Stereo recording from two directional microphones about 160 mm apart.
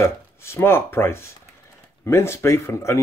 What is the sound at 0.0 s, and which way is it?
Speech, 15° left (ahead or behind).